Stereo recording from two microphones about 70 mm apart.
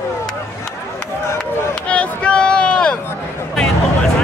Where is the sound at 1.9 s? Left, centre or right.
Centre.